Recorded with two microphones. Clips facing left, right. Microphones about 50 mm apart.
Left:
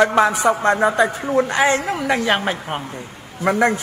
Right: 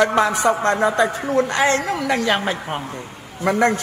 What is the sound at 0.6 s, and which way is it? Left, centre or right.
A woman's voice, left.